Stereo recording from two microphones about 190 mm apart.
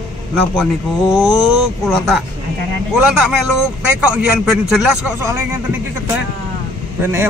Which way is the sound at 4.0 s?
5° right (ahead or behind).